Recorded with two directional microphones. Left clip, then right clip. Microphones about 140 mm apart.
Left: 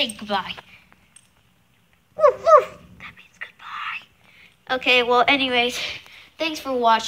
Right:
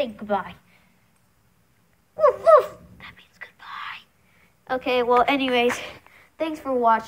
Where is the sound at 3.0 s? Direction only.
45° right (ahead or behind).